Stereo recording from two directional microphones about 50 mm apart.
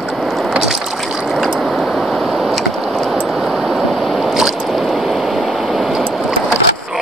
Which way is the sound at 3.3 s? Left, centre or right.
Centre.